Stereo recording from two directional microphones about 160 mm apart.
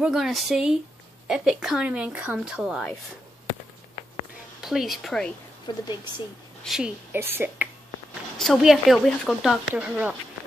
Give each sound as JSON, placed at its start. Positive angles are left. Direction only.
{"t": 0.0, "sound": "speech", "side_deg": -5}
{"t": 4.6, "sound": "a woman's voice", "side_deg": 0}
{"t": 5.7, "sound": "speech", "side_deg": 25}
{"t": 6.6, "sound": "a woman's voice", "side_deg": -5}
{"t": 7.2, "sound": "speech", "side_deg": -15}
{"t": 8.4, "sound": "speech", "side_deg": 0}